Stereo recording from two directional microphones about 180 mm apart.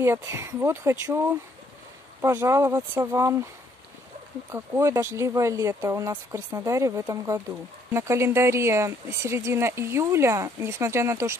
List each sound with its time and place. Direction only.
0.0 s speech: 15° right (ahead or behind)
4.5 s speech: 15° right (ahead or behind)